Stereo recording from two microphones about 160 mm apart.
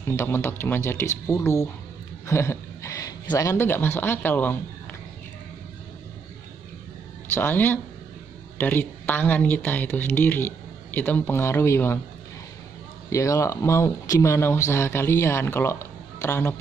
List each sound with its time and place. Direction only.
0.1 s speech: 15° left (ahead or behind)
2.2 s a sound: 15° left (ahead or behind)
3.3 s speech: 15° left (ahead or behind)
7.3 s speech: 10° left (ahead or behind)
13.1 s speech: 20° left (ahead or behind)